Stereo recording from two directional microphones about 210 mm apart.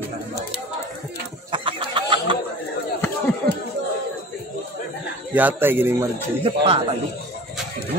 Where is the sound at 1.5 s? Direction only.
25° right (ahead or behind).